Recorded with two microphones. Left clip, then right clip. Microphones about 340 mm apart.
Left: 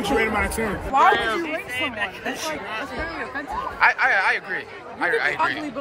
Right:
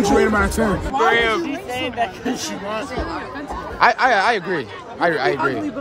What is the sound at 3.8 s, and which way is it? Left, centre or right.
Speech, right.